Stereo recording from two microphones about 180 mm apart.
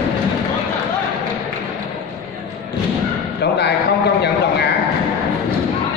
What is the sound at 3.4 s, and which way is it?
Speech, 65° left (ahead or behind).